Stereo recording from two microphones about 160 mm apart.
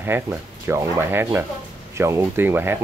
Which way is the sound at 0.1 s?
15° right (ahead or behind).